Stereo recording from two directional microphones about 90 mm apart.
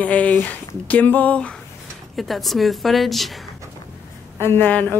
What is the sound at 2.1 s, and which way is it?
Speech, centre (ahead or behind).